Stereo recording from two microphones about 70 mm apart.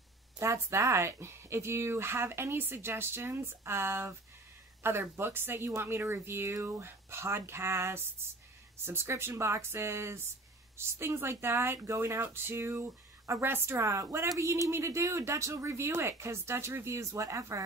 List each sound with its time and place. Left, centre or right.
0.4 s speech: right